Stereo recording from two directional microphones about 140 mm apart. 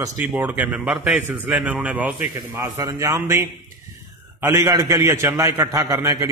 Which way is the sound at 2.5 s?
25° right (ahead or behind).